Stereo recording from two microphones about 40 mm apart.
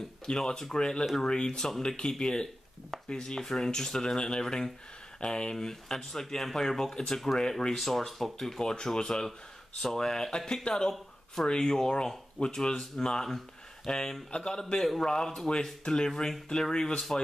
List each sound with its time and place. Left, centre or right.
0.3 s speech: centre